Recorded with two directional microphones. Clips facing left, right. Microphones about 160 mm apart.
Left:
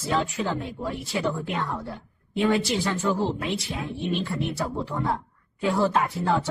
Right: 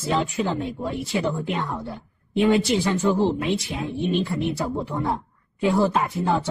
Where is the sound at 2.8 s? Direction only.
20° right (ahead or behind).